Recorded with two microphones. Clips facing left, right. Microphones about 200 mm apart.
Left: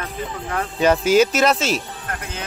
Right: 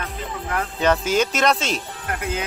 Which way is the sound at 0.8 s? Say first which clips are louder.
Left 5 dB; 10° left (ahead or behind).